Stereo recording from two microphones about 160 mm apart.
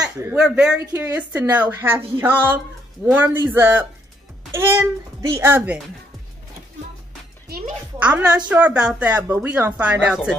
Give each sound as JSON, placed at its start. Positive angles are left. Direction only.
{"t": 0.2, "sound": "a child's voice", "side_deg": -10}
{"t": 7.4, "sound": "a child's voice", "side_deg": -75}
{"t": 8.0, "sound": "speech", "side_deg": -10}